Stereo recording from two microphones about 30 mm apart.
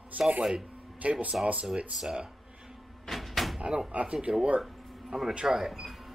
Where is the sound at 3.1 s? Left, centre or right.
Centre.